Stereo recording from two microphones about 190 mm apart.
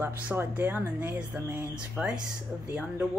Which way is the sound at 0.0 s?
10° right (ahead or behind).